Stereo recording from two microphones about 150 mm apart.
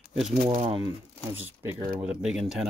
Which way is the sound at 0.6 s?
35° right (ahead or behind).